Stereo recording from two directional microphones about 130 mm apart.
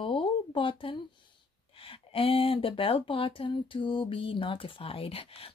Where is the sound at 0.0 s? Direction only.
40° left (ahead or behind).